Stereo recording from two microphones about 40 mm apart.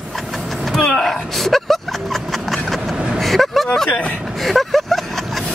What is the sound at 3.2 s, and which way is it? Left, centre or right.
Vehicle, centre.